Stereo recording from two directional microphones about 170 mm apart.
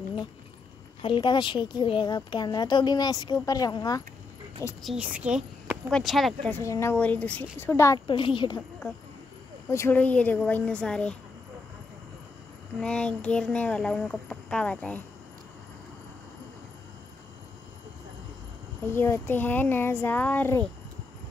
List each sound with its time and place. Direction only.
1.0 s speech: 25° left (ahead or behind)
4.8 s a woman's voice: 5° right (ahead or behind)
6.5 s speech: 15° left (ahead or behind)
8.1 s speech: 30° left (ahead or behind)
9.7 s speech: 15° left (ahead or behind)
12.8 s speech: 5° left (ahead or behind)
18.9 s speech: 15° left (ahead or behind)